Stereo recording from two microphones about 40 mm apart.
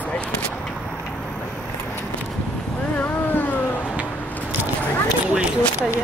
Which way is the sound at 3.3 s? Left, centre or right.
Left.